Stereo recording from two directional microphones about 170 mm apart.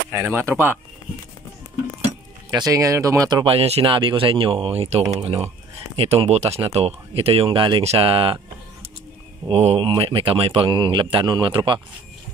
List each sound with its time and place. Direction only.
0.1 s speech: 15° right (ahead or behind)
2.5 s speech: 20° right (ahead or behind)
3.4 s speech: 35° right (ahead or behind)
9.5 s speech: 35° right (ahead or behind)